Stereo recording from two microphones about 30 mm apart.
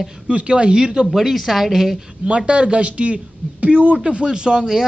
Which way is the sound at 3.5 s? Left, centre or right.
Right.